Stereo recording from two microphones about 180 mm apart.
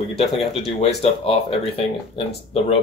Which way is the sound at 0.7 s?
35° left (ahead or behind).